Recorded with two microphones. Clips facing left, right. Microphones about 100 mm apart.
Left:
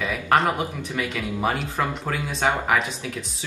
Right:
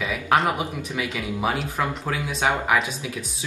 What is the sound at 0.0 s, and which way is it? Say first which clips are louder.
Speech: left 1 dB; 5° right (ahead or behind).